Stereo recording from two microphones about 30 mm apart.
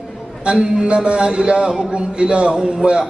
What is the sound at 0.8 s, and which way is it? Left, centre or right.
A man's voice, right.